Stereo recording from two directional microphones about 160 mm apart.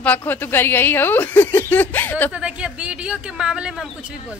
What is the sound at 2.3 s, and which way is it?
Speech, 5° right (ahead or behind).